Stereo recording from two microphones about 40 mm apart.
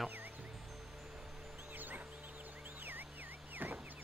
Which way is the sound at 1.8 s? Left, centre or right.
Right.